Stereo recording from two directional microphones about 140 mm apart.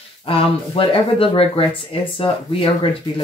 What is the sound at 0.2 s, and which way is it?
Speech, 40° left (ahead or behind).